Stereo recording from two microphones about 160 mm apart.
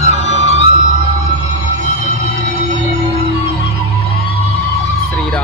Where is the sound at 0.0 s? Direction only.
45° left (ahead or behind).